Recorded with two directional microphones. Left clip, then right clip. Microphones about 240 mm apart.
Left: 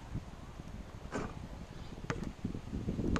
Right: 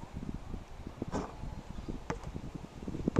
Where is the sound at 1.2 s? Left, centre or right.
Centre.